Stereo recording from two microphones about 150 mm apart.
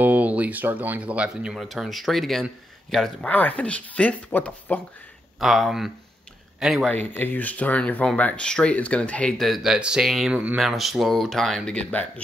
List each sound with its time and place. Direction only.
0.0 s speech: 10° right (ahead or behind); by 4.7 s 10° left (ahead or behind)
5.4 s speech: centre (ahead or behind)
6.9 s speech: 10° left (ahead or behind)